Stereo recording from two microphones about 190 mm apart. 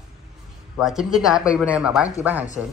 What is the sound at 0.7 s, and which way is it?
A man's voice, centre (ahead or behind).